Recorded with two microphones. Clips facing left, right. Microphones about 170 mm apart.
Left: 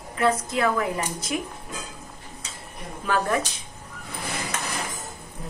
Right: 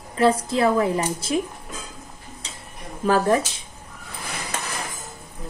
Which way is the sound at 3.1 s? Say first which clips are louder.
Right 5 dB; 35° right (ahead or behind).